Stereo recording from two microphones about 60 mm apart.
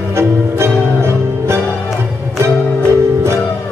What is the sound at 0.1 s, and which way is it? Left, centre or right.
Music, right.